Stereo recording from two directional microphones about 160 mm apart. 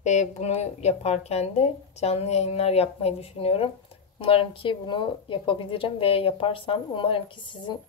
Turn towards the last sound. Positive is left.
turn(degrees=30)  # may be behind; listen again after turning